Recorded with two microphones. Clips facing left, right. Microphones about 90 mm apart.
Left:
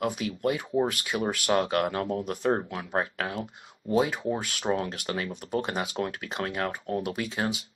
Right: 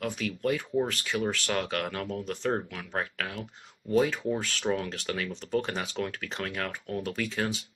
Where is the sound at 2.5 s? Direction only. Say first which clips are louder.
Left 4 dB; 25° left (ahead or behind).